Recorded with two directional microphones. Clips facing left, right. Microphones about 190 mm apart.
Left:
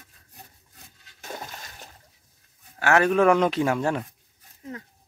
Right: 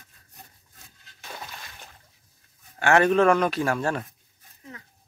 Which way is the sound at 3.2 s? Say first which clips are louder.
Left 1 dB; 20° left (ahead or behind).